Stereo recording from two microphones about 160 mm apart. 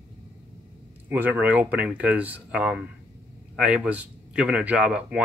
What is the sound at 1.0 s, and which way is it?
A man's voice, 10° right (ahead or behind).